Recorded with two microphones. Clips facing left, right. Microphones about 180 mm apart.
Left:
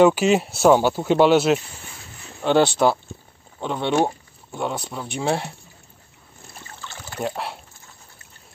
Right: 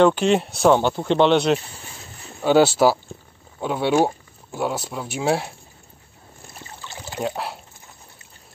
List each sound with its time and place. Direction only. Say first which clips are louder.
0.0 s speech: left 1 dB; 5° left (ahead or behind)
6.8 s a sound: right 2 dB; 20° right (ahead or behind)
7.2 s speech: right 1 dB; centre (ahead or behind)